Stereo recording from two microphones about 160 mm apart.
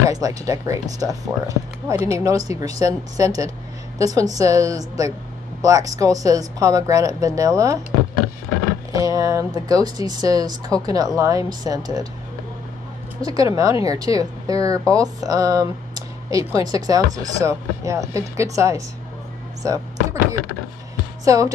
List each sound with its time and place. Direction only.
0.1 s speech: 20° right (ahead or behind)
8.9 s speech: 20° right (ahead or behind)
13.2 s speech: 20° right (ahead or behind)
21.2 s speech: 20° right (ahead or behind)